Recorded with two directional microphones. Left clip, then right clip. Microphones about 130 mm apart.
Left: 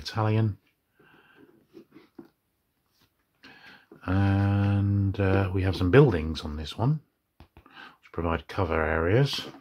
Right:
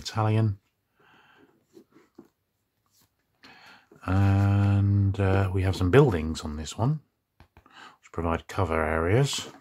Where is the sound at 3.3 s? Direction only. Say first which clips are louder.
Left 1 dB; 35° right (ahead or behind).